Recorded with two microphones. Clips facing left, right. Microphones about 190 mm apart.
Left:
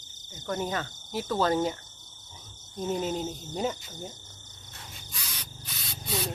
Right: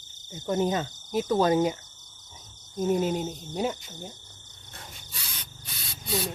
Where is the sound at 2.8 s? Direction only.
10° right (ahead or behind).